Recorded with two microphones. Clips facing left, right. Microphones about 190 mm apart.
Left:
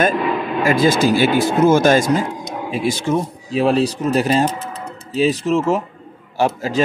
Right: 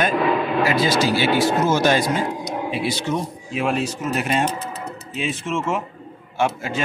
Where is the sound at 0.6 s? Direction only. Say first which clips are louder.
Left 8 dB; 50° left (ahead or behind).